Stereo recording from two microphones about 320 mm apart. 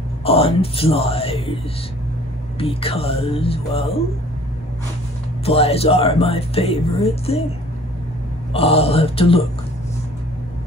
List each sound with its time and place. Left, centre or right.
0.2 s speech: centre
2.6 s speech: centre
5.4 s speech: centre
8.5 s speech: centre